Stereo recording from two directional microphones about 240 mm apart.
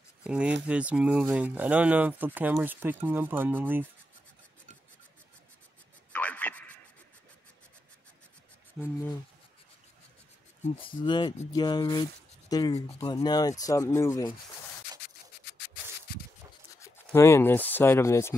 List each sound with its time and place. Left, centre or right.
0.2 s speech: centre
6.1 s a sound: centre
10.6 s speech: left
15.5 s rub: left
16.8 s speech: centre